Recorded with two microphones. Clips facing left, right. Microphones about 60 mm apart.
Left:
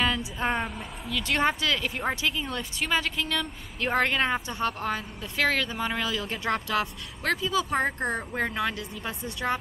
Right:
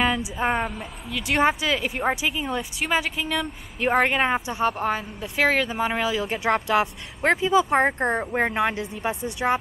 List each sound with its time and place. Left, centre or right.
0.0 s a woman's voice: centre